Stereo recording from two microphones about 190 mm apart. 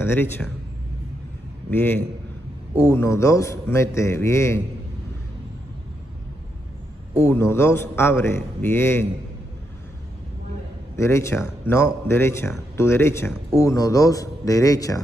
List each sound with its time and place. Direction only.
0.0 s a man's voice: 10° left (ahead or behind)
1.7 s a man's voice: 10° left (ahead or behind)
7.2 s a man's voice: 15° left (ahead or behind)
11.0 s a man's voice: 15° left (ahead or behind)